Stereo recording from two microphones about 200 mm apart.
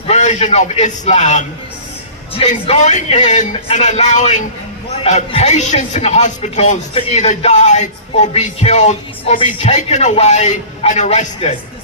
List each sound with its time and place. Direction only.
0.0 s a man's voice: 35° left (ahead or behind)